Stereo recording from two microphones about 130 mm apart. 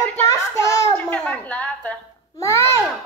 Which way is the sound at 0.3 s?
25° left (ahead or behind).